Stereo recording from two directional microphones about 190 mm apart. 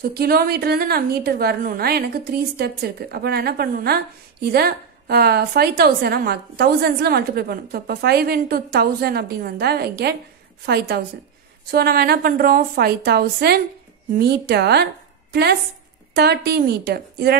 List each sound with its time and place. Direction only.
0.1 s a woman's voice: 55° right (ahead or behind)
16.1 s a woman's voice: 60° right (ahead or behind)